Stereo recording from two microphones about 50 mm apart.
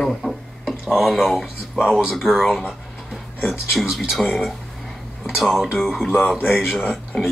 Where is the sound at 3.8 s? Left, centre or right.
Centre.